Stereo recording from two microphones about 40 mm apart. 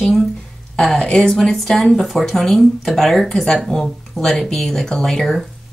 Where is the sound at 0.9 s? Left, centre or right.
Centre.